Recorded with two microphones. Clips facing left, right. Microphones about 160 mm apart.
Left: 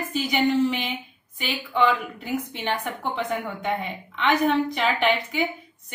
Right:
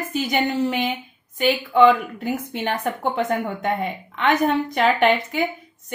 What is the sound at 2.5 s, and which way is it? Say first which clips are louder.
A woman's voice: right 4 dB; 45° right (ahead or behind).